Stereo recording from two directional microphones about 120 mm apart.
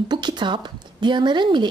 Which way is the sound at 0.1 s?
40° right (ahead or behind).